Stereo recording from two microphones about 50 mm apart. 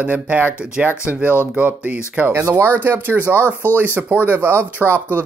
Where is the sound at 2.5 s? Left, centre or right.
Right.